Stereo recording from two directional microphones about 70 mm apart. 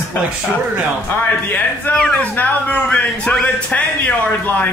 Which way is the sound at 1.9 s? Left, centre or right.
Centre.